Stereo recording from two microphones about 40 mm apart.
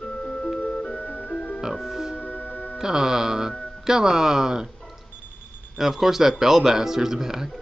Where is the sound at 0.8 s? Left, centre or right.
Left.